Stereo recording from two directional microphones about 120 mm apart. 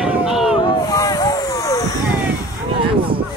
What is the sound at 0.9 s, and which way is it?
Vehicle, 30° left (ahead or behind).